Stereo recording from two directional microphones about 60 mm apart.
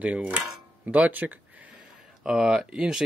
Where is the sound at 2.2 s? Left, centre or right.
Centre.